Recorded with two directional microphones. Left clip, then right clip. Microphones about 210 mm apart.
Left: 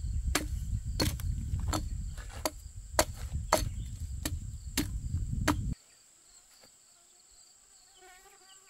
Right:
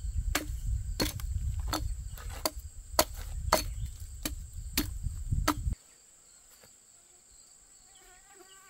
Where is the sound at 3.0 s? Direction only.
15° right (ahead or behind).